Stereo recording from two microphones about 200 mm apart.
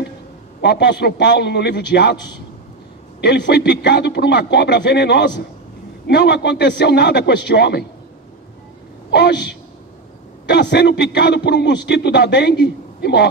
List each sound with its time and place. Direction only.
0.6 s a man's voice: 60° left (ahead or behind)
9.1 s a man's voice: 60° left (ahead or behind)